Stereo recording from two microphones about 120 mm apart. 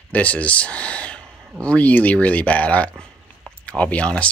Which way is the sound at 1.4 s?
25° right (ahead or behind).